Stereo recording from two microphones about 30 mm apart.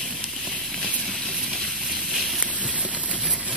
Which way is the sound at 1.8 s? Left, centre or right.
Centre.